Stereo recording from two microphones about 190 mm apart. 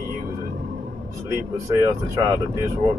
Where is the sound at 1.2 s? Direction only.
15° right (ahead or behind).